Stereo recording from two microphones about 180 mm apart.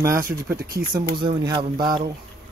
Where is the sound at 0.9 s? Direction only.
25° right (ahead or behind).